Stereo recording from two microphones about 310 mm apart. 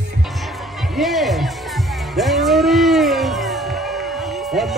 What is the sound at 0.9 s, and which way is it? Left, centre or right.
Music, centre.